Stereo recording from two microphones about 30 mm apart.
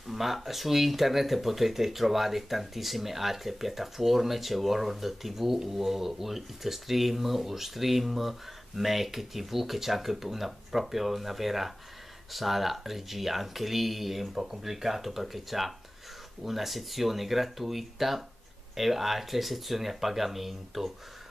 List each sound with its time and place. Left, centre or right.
0.0 s a sound: centre
0.5 s speech: centre
14.3 s speech: centre